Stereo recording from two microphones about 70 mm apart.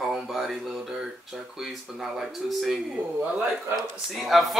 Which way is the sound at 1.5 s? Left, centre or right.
Centre.